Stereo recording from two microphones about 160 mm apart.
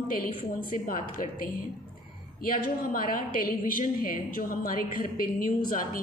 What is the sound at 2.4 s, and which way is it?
A woman's voice, 60° left (ahead or behind).